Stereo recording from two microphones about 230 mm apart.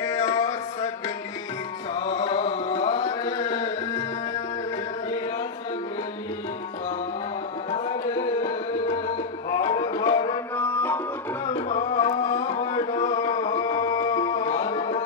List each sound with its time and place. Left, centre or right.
0.0 s music: centre
7.7 s tabla: left
10.5 s music: centre
11.4 s music: left